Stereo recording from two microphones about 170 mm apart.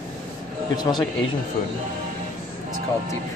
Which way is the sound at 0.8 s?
25° left (ahead or behind).